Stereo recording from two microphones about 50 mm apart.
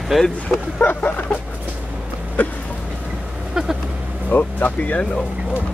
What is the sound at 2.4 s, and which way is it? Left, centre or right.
Speech, left.